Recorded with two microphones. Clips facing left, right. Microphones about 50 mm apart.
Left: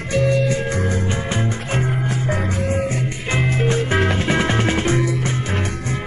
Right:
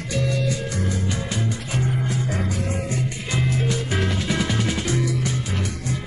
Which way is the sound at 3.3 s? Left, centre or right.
Left.